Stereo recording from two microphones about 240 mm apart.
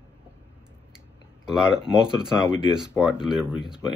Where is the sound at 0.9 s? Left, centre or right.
Centre.